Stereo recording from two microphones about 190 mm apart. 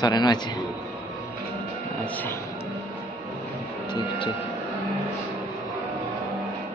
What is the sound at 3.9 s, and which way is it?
Printer, 25° left (ahead or behind).